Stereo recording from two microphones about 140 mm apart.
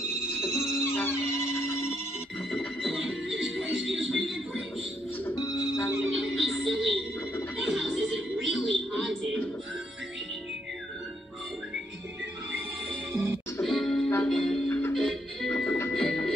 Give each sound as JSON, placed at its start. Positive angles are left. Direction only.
{"t": 0.4, "sound": "music", "side_deg": 20}
{"t": 2.5, "sound": "music", "side_deg": 0}
{"t": 5.3, "sound": "music", "side_deg": 25}
{"t": 5.9, "sound": "music", "side_deg": 0}
{"t": 13.1, "sound": "music", "side_deg": -15}
{"t": 13.6, "sound": "music", "side_deg": 0}
{"t": 15.9, "sound": "music", "side_deg": 0}